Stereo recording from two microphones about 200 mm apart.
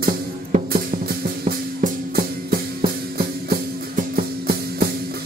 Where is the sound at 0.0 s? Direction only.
40° right (ahead or behind).